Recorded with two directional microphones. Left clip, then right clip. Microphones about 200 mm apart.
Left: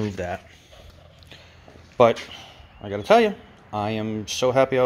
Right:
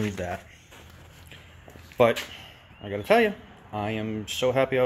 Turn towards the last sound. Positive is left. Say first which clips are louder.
# left 4 dB
turn(degrees=25)  # may be behind; listen again after turning